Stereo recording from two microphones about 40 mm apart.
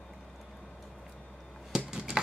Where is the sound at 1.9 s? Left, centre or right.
Centre.